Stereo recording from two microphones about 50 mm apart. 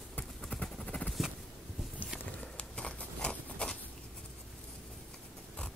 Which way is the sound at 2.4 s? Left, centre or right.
Left.